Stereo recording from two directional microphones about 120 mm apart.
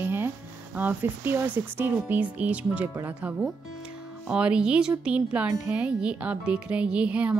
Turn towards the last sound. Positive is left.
turn(degrees=-10)  # may be behind; listen again after turning